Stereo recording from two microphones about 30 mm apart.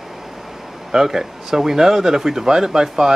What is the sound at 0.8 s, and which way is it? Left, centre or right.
Speech, centre.